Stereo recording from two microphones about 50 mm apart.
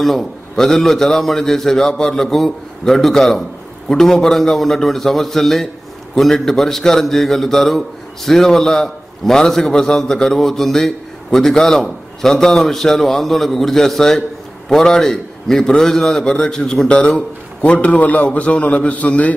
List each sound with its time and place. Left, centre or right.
0.0 s a man's voice: centre; by 19.3 s left